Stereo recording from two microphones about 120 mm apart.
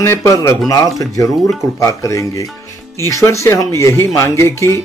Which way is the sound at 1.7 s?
25° left (ahead or behind).